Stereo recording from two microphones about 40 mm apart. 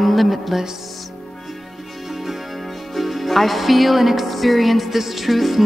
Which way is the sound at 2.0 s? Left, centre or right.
Centre.